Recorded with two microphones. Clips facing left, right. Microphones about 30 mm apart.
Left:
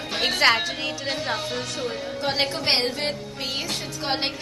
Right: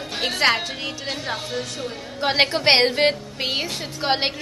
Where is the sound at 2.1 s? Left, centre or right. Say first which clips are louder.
Right 7 dB; right.